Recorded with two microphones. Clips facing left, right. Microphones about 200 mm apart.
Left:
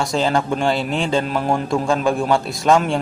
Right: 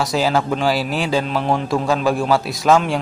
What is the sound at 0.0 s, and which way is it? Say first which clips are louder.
A man's voice: right 1 dB; 5° right (ahead or behind).